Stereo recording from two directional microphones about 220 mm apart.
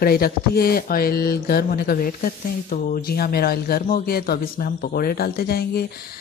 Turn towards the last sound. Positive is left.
turn(degrees=45)  # may be behind; listen again after turning